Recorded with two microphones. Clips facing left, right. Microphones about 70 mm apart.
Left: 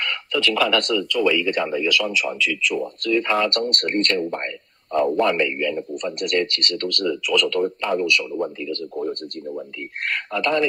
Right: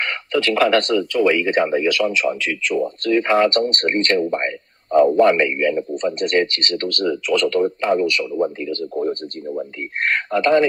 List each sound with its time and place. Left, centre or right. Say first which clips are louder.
0.0 s speech: right 3 dB; right